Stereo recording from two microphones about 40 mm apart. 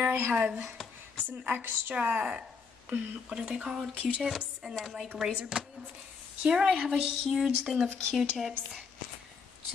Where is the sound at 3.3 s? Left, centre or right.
Right.